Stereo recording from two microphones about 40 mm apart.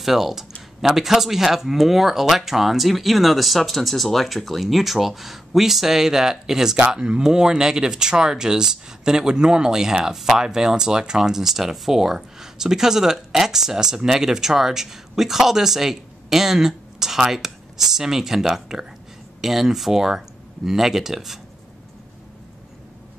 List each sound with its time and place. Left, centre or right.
0.0 s speech: centre